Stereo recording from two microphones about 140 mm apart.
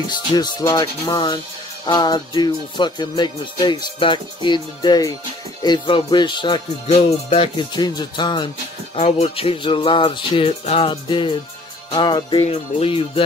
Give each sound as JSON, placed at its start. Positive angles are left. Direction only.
{"t": 0.3, "sound": "music", "side_deg": 30}
{"t": 8.9, "sound": "music", "side_deg": 50}